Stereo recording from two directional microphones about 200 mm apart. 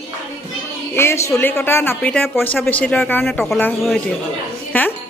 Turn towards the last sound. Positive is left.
turn(degrees=10)  # may be behind; listen again after turning